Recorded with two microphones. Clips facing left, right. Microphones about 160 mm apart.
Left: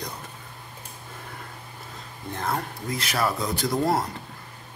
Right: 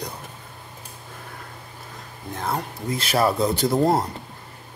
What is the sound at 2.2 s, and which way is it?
Speech, centre (ahead or behind).